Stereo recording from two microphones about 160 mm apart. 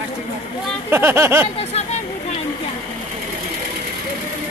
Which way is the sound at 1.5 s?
40° left (ahead or behind).